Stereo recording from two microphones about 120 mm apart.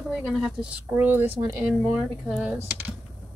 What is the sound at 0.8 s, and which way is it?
Speech, 15° right (ahead or behind).